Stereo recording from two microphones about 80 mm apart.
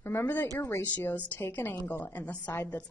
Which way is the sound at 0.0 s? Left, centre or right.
Left.